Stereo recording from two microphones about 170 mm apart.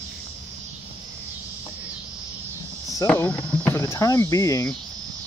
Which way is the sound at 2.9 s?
15° left (ahead or behind).